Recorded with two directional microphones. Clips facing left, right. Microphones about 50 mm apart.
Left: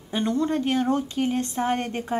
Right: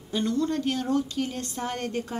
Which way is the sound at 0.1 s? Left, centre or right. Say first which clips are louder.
Left 2 dB; left.